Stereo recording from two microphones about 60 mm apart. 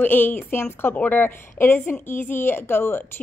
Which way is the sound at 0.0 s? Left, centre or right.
Left.